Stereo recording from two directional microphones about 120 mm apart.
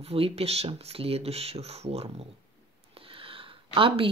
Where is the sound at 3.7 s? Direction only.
50° right (ahead or behind).